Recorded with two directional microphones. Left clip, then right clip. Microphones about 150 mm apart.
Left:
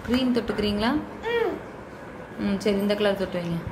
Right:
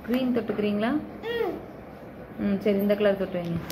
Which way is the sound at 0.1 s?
20° left (ahead or behind).